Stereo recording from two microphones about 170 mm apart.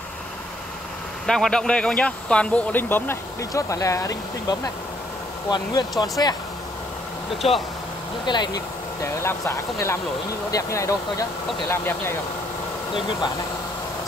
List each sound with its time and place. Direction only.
1.2 s speech: 5° left (ahead or behind); by 6.3 s 25° left (ahead or behind)
7.4 s speech: 35° left (ahead or behind)
8.3 s speech: 25° left (ahead or behind)